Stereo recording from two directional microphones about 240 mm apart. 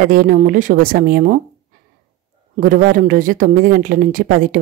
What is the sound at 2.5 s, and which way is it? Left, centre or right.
A woman's voice, right.